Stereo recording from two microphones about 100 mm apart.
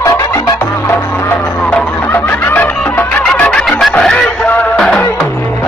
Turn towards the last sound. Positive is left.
turn(degrees=5)  # may be behind; listen again after turning